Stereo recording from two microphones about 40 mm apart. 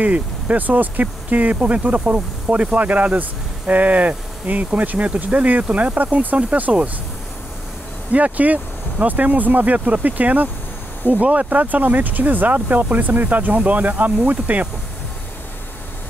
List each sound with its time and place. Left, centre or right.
0.0 s speech: right
8.1 s speech: right